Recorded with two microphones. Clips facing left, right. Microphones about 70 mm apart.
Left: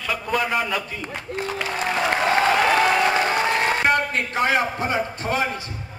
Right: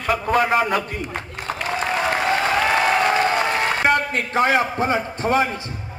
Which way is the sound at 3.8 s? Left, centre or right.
Right.